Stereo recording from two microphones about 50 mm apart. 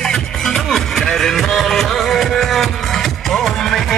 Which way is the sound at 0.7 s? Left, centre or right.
Centre.